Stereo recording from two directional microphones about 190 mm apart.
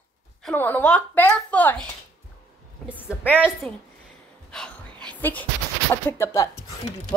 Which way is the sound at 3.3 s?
5° right (ahead or behind).